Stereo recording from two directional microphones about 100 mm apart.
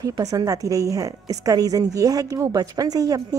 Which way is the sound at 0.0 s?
35° right (ahead or behind).